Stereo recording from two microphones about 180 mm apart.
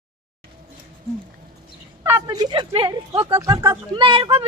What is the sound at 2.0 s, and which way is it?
Speech, 15° right (ahead or behind).